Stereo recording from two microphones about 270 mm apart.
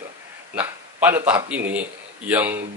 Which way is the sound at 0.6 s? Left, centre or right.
Centre.